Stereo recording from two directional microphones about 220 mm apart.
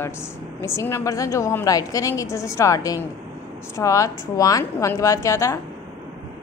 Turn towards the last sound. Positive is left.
turn(degrees=15)  # may be behind; listen again after turning